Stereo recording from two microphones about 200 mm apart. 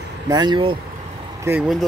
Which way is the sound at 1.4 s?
10° right (ahead or behind).